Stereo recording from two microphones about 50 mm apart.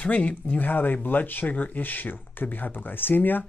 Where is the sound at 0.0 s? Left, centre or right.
Left.